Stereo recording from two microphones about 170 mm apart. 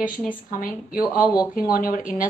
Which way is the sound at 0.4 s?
55° left (ahead or behind).